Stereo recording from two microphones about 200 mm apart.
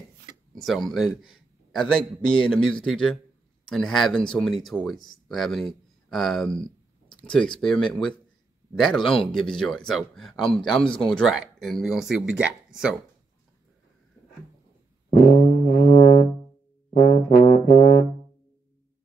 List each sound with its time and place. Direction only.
0.6 s a man's voice: centre (ahead or behind)
15.0 s brass instrument: 45° left (ahead or behind)